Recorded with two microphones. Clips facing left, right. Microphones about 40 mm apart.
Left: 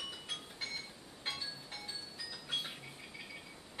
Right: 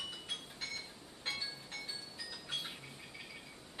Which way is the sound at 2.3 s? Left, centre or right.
Centre.